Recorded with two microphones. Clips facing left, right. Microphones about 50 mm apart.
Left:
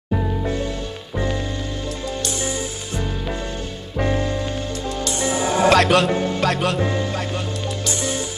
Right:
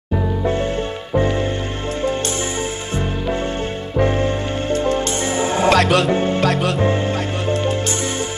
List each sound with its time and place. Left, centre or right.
4.8 s music: right
5.7 s speech: centre
6.1 s music: right
6.4 s speech: centre
6.8 s music: right